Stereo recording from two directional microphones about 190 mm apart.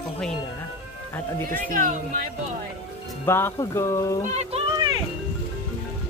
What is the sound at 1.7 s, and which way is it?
Speech, 45° right (ahead or behind).